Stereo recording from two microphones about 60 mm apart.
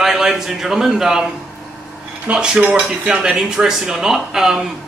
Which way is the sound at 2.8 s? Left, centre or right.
Centre.